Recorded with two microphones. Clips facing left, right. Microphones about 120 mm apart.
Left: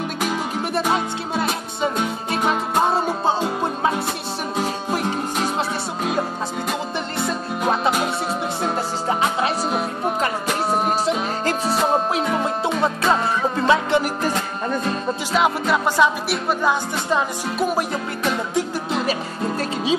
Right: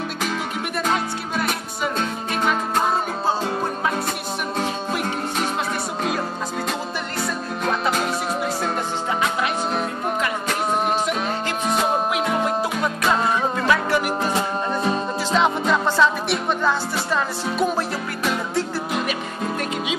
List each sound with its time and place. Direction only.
2.4 s music: 25° left (ahead or behind)
10.2 s music: 35° left (ahead or behind)
13.1 s music: 25° left (ahead or behind)
15.3 s music: 5° left (ahead or behind)